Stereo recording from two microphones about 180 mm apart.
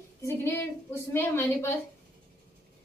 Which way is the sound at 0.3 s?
15° left (ahead or behind).